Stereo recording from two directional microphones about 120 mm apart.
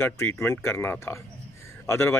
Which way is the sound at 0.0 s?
20° left (ahead or behind).